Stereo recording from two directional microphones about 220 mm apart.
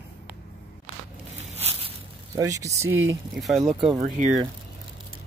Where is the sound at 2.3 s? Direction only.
15° right (ahead or behind).